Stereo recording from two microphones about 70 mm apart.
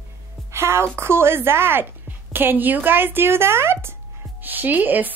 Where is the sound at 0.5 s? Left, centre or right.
Right.